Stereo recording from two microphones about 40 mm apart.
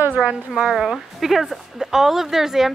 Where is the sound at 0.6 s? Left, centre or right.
Centre.